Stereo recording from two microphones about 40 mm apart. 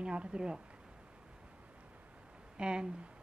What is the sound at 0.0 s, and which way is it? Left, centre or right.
Speech, right.